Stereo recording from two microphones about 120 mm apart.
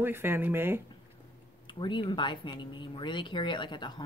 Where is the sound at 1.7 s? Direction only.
40° left (ahead or behind).